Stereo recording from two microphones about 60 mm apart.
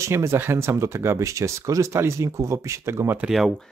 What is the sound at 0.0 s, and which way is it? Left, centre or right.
Speech, right.